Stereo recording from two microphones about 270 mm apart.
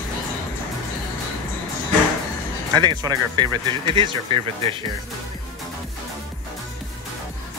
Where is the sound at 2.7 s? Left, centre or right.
Centre.